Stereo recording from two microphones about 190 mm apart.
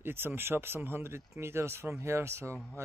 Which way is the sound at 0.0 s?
10° right (ahead or behind).